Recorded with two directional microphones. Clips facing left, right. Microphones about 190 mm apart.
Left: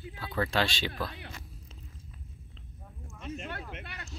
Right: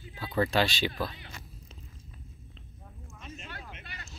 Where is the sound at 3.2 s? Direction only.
60° left (ahead or behind).